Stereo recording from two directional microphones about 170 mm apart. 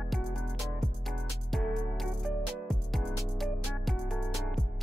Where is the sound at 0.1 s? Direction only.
Centre (ahead or behind).